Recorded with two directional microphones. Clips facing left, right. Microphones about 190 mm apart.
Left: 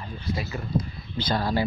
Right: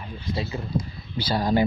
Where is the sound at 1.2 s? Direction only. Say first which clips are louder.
Right 3 dB; 10° right (ahead or behind).